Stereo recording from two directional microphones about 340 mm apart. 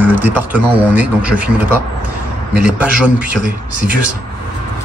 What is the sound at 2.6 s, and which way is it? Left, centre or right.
Speech, centre.